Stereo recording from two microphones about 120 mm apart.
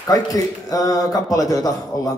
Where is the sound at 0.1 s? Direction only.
30° left (ahead or behind).